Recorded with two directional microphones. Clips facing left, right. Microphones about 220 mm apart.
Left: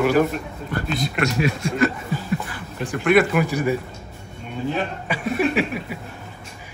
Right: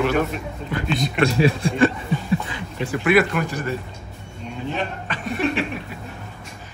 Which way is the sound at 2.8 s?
5° right (ahead or behind).